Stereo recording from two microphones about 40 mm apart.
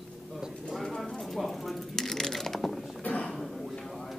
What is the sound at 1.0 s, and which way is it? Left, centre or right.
Clip-clop, centre.